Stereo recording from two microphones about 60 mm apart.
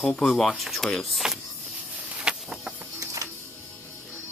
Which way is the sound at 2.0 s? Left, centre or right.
Right.